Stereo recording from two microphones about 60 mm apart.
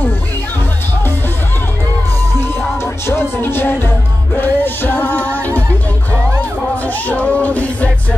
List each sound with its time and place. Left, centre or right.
2.8 s music: left
7.1 s music: left